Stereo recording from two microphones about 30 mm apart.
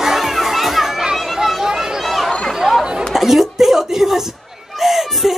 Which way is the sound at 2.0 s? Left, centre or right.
Centre.